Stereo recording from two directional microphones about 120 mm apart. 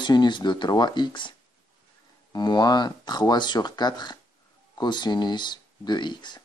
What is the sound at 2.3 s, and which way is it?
Speech, 35° left (ahead or behind).